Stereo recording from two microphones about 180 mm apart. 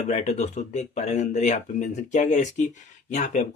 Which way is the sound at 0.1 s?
40° left (ahead or behind).